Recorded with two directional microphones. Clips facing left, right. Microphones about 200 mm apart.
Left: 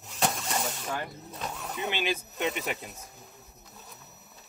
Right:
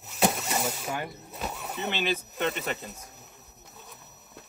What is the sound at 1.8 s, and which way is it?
Speech, 10° left (ahead or behind).